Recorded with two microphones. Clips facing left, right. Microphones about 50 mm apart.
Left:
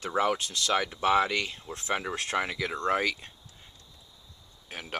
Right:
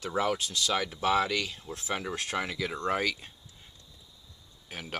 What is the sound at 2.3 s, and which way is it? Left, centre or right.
Speech, centre.